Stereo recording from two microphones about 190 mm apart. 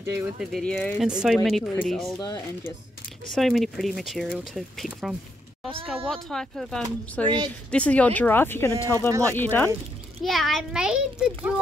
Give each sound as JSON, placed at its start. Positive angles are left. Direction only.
{"t": 0.0, "sound": "speech", "side_deg": -15}
{"t": 0.5, "sound": "speech", "side_deg": 5}
{"t": 2.2, "sound": "speech", "side_deg": 20}
{"t": 3.3, "sound": "speech", "side_deg": 0}
{"t": 7.2, "sound": "a woman's voice", "side_deg": -25}
{"t": 7.7, "sound": "speech", "side_deg": 5}